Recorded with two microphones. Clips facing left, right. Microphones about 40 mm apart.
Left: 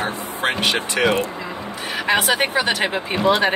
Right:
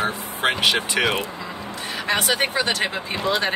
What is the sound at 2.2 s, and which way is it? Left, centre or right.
Speech, centre.